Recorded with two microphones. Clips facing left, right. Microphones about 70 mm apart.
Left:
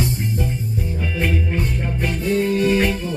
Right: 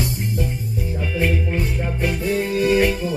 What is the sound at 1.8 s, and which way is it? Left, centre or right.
Music, centre.